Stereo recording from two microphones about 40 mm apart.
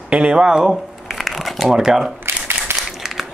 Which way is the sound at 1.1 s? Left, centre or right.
Centre.